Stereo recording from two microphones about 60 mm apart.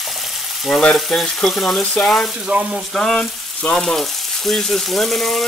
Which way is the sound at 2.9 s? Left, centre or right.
Centre.